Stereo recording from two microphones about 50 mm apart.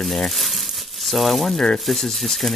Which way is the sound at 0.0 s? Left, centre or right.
Centre.